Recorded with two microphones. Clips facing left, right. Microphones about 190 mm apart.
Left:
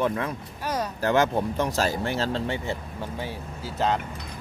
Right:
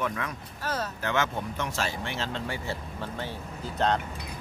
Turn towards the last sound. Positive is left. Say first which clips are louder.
# left 1 dB
turn(degrees=5)  # may be behind; listen again after turning